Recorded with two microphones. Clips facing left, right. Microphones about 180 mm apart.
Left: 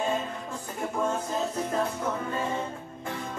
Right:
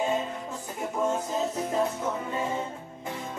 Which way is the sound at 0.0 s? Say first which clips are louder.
Right 1 dB; 15° right (ahead or behind).